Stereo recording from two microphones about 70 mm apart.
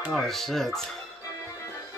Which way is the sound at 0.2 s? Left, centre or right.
Centre.